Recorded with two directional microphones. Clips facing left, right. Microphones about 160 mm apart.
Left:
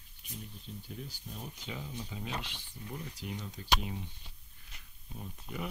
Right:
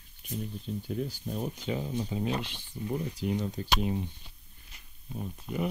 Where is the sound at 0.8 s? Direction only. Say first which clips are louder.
Right 13 dB; 60° right (ahead or behind); by 4.0 s 45° right (ahead or behind).